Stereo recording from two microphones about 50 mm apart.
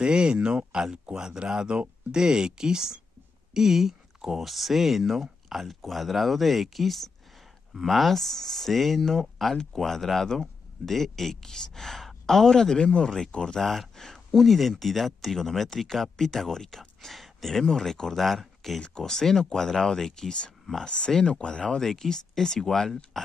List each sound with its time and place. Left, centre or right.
0.0 s speech: centre
13.6 s speech: centre